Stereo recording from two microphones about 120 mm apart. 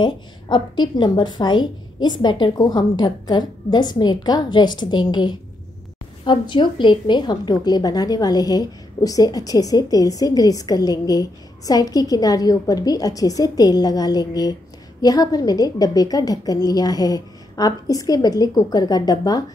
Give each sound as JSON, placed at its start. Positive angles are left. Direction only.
{"t": 0.0, "sound": "a woman's voice", "side_deg": 40}